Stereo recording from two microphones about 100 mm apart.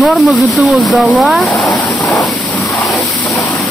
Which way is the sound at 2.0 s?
30° left (ahead or behind).